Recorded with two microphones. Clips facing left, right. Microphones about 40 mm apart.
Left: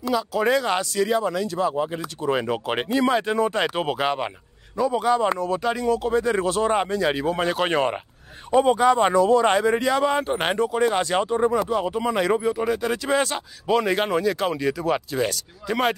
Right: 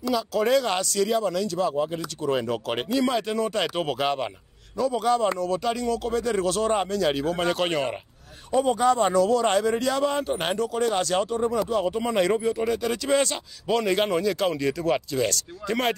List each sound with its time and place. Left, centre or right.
0.0 s speech: centre
2.5 s speech: left
8.5 s speech: left
11.7 s speech: centre